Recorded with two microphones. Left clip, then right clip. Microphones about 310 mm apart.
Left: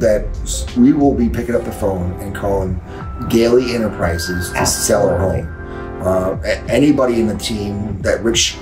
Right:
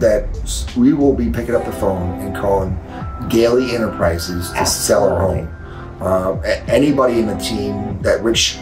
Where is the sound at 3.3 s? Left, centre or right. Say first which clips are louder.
Left 1 dB; centre.